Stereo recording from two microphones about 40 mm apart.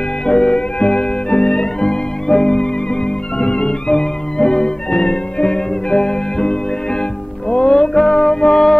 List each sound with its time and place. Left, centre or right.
0.3 s music: left